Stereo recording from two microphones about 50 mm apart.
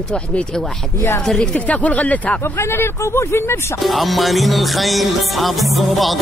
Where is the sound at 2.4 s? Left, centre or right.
Left.